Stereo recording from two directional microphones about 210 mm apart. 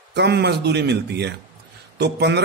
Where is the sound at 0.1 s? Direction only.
55° right (ahead or behind).